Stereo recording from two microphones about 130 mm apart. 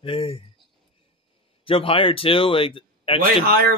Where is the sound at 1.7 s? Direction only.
45° left (ahead or behind).